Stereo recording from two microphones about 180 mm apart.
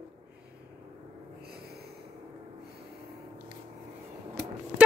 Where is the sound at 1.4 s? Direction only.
60° right (ahead or behind).